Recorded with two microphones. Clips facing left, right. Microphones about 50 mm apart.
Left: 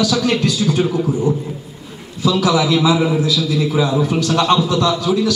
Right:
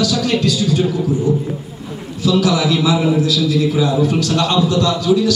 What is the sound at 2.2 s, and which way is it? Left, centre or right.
A man's voice, left.